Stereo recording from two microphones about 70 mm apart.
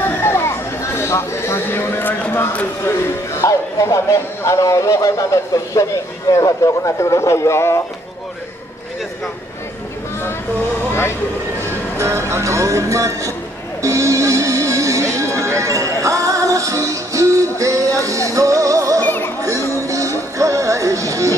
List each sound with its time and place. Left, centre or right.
0.0 s a sound: left
3.3 s speech: left
10.9 s vehicle: left
12.0 s music: right
19.0 s music: left
19.8 s music: right